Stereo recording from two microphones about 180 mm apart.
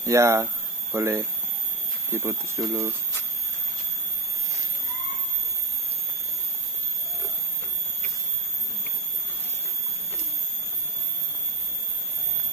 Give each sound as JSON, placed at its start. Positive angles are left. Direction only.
{"t": 0.0, "sound": "speech", "side_deg": -15}